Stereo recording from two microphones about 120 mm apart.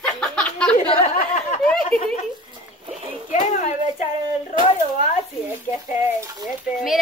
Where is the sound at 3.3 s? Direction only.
90° left.